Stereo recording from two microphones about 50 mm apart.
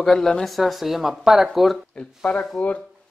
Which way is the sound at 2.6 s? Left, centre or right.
Left.